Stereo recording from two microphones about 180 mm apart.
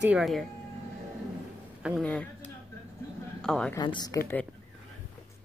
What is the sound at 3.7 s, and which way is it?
Speech, 25° left (ahead or behind).